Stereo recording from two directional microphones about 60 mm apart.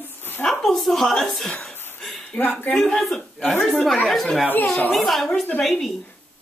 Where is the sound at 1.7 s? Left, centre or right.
Left.